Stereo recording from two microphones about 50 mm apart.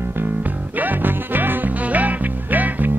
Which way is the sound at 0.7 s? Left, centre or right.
Right.